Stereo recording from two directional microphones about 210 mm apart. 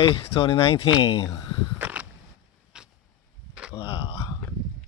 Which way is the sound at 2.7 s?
5° right (ahead or behind).